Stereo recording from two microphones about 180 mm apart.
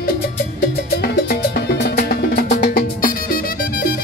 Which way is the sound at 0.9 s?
60° left (ahead or behind).